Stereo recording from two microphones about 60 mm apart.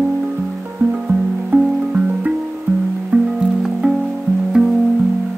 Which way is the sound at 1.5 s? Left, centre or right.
Right.